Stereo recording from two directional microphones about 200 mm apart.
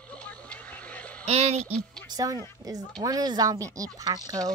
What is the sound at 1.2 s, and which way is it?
Speech, 30° right (ahead or behind).